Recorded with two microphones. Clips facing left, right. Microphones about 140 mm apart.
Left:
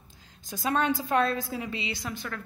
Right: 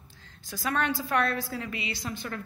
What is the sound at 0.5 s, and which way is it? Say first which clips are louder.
A woman's voice: left 2 dB; 20° left (ahead or behind).